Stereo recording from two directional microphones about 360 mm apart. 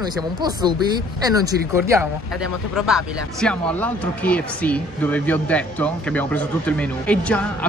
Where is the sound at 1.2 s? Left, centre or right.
Centre.